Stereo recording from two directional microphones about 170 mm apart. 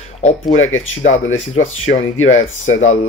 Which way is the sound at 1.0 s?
45° left (ahead or behind).